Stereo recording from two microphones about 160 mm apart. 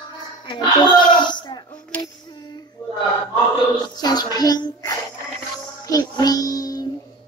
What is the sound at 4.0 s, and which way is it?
A child's voice, 25° left (ahead or behind).